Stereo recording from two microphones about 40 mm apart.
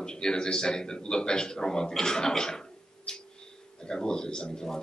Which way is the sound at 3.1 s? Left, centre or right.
Centre.